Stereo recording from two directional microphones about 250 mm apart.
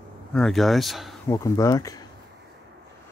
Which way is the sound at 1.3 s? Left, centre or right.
Centre.